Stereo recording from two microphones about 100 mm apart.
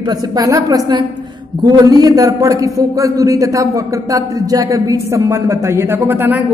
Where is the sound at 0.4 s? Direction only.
35° right (ahead or behind).